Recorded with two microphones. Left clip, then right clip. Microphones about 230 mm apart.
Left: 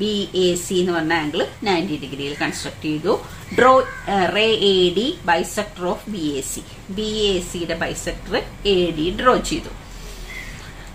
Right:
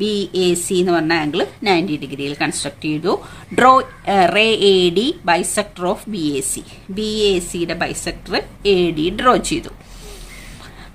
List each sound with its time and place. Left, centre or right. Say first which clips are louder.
0.0 s speech: right 2 dB; right